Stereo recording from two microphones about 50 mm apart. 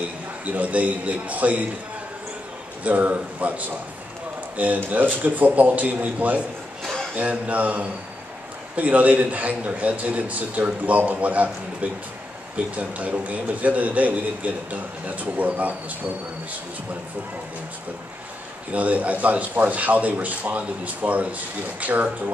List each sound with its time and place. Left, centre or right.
0.5 s a man's voice: right
2.8 s a man's voice: right
18.7 s a man's voice: right